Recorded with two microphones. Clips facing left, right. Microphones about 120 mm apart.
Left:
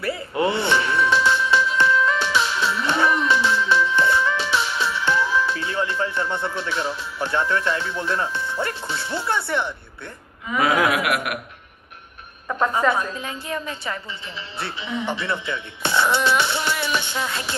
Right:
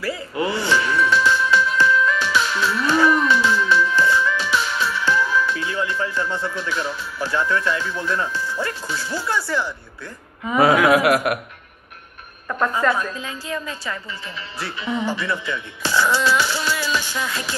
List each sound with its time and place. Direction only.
0.0 s music: 25° left (ahead or behind)
10.5 s speech: 35° right (ahead or behind)
12.9 s speech: 30° left (ahead or behind)